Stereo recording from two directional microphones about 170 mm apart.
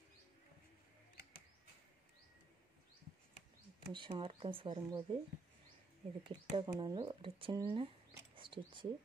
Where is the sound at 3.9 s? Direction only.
30° right (ahead or behind).